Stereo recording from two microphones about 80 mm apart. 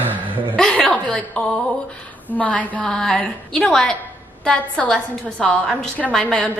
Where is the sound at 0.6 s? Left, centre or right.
Centre.